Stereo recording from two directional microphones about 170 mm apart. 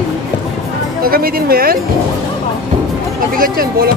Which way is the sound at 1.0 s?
60° right (ahead or behind).